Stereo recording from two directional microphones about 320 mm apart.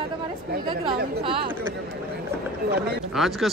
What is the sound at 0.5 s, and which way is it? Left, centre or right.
Speech, right.